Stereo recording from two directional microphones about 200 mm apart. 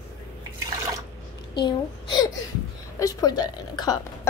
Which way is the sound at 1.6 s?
20° left (ahead or behind).